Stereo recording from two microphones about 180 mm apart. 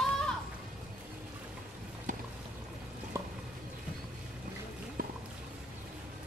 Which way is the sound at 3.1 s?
15° right (ahead or behind).